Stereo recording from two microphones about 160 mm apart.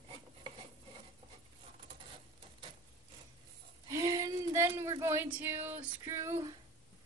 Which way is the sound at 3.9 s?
20° right (ahead or behind).